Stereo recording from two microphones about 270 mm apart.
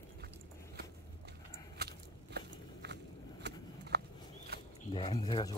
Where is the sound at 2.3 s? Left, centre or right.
Right.